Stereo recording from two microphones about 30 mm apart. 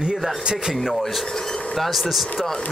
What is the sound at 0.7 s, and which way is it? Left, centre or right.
Speech, centre.